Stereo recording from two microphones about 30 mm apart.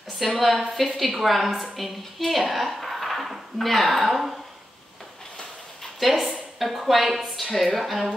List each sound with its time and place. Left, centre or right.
0.2 s a woman's voice: centre
5.9 s a woman's voice: centre